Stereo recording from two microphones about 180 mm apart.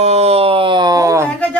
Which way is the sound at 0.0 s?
35° right (ahead or behind).